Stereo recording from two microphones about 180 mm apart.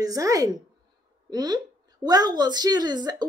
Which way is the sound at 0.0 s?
20° right (ahead or behind).